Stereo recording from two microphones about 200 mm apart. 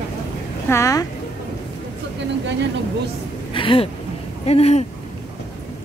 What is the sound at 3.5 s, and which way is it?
Speech, 25° left (ahead or behind).